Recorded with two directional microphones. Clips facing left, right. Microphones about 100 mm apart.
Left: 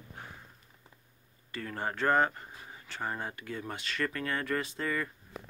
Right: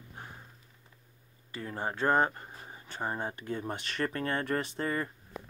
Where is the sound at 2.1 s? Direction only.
30° right (ahead or behind).